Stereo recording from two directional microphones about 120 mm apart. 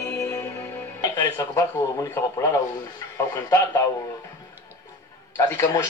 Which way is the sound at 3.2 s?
25° left (ahead or behind).